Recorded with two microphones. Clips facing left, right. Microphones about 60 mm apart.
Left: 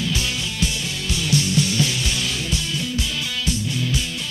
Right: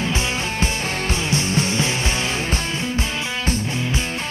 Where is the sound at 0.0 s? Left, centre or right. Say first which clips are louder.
Right 3 dB; right.